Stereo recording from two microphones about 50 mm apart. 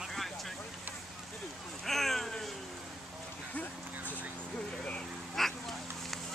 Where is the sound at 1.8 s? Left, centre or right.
Centre.